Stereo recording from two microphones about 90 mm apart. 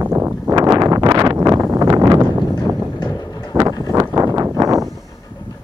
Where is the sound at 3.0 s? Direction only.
45° left (ahead or behind).